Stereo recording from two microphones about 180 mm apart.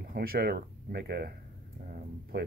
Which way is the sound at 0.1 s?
55° right (ahead or behind).